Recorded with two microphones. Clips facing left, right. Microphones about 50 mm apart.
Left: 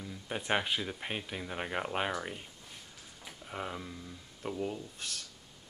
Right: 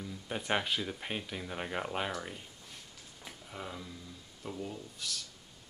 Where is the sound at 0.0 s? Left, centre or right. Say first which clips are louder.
Even; centre.